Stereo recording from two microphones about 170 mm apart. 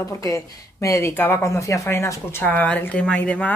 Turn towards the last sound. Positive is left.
turn(degrees=10)  # may be behind; listen again after turning